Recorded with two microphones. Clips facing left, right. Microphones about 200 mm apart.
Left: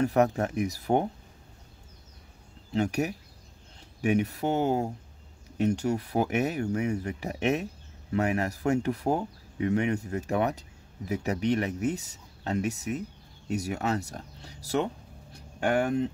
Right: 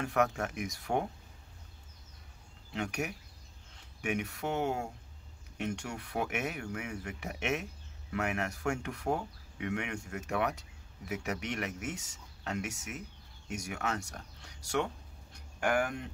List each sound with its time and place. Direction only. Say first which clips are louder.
0.0 s speech: left 7 dB; 35° left (ahead or behind)
2.7 s speech: left 9 dB; 35° left (ahead or behind)
15.3 s a sound: left 4 dB; 25° left (ahead or behind)